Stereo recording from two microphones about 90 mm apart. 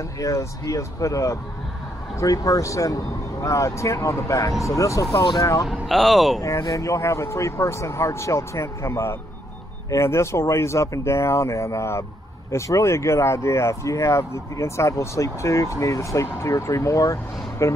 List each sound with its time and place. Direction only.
0.2 s speech: 35° left (ahead or behind)
5.7 s speech: centre (ahead or behind)
6.6 s speech: 35° left (ahead or behind)